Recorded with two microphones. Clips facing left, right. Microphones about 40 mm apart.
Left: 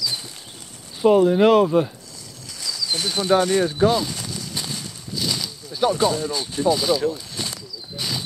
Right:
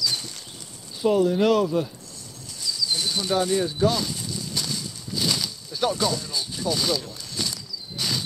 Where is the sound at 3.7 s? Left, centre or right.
Left.